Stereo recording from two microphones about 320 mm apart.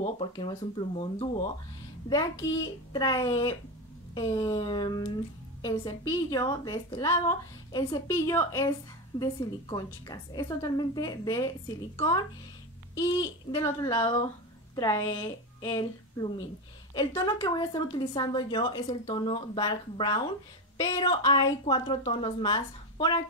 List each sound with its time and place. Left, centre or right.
0.0 s speech: centre
12.9 s a woman's voice: centre